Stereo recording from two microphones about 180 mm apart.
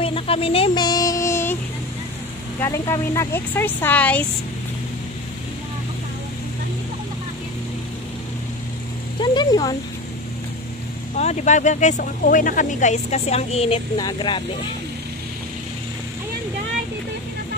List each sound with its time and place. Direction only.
0.0 s a sound: 30° left (ahead or behind); by 1.6 s 15° left (ahead or behind)
2.6 s speech: 15° left (ahead or behind)
9.2 s speech: 25° left (ahead or behind)
11.1 s speech: 40° left (ahead or behind)